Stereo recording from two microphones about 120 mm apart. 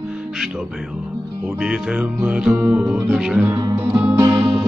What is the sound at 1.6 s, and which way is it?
Music, 5° right (ahead or behind).